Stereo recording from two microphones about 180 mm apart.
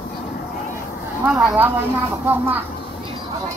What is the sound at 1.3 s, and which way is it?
Speech, 5° right (ahead or behind).